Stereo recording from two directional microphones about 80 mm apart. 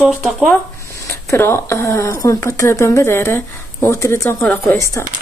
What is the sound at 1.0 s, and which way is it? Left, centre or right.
Speech, left.